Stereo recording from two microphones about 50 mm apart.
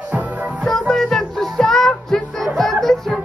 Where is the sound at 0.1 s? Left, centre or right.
Right.